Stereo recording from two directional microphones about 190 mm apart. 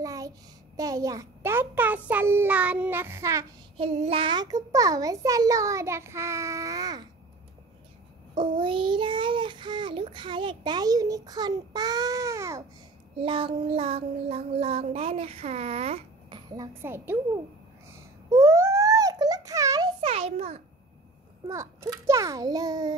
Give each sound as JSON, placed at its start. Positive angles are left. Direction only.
{"t": 0.0, "sound": "a sound", "side_deg": -20}
{"t": 0.7, "sound": "a child's voice", "side_deg": -20}
{"t": 3.7, "sound": "child singing", "side_deg": -30}
{"t": 8.4, "sound": "child singing", "side_deg": -25}
{"t": 13.2, "sound": "child singing", "side_deg": -30}
{"t": 17.9, "sound": "a sound", "side_deg": -15}
{"t": 20.0, "sound": "child singing", "side_deg": -30}
{"t": 21.5, "sound": "a child's voice", "side_deg": -15}